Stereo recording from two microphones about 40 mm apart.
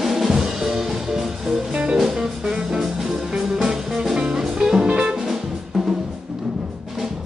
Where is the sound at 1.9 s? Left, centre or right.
Centre.